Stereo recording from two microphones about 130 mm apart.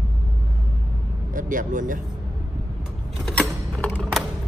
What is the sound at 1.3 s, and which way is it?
Speech, 90° right.